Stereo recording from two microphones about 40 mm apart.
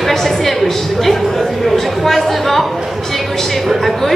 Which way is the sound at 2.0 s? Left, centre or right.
Centre.